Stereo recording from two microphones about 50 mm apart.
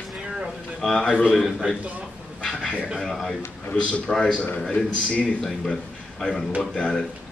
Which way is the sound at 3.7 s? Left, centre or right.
Left.